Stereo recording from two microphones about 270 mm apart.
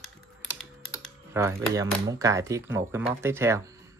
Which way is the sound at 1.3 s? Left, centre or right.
Centre.